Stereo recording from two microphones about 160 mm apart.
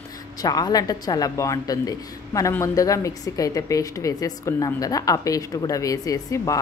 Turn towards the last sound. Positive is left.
turn(degrees=20)  # may be behind; listen again after turning